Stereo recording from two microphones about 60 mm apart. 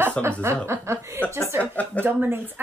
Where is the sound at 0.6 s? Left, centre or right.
Right.